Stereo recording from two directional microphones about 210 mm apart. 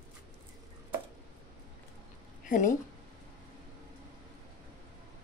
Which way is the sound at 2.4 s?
40° left (ahead or behind).